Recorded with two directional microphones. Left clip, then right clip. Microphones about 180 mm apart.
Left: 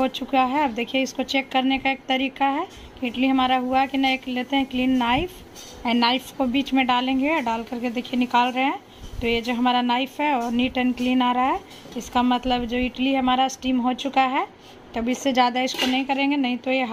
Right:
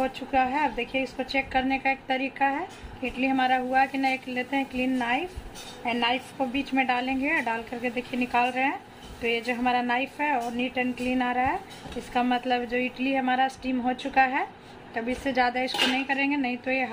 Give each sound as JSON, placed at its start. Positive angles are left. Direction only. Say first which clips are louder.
{"t": 0.0, "sound": "speech", "louder": "left 4 dB", "side_deg": 50}
{"t": 12.7, "sound": "speech", "louder": "left 2 dB", "side_deg": 0}
{"t": 13.0, "sound": "speech", "louder": "left 5 dB", "side_deg": 40}